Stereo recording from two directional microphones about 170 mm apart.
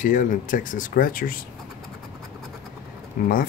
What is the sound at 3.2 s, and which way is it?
Speech, 55° left (ahead or behind).